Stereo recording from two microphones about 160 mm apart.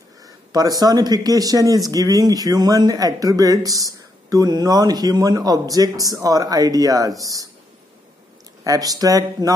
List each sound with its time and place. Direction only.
0.5 s speech: 25° right (ahead or behind)
8.6 s speech: 25° right (ahead or behind)